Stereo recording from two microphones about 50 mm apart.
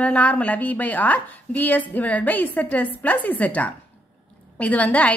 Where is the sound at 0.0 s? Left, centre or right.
Left.